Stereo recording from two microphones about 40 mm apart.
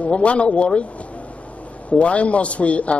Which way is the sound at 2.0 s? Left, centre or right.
Left.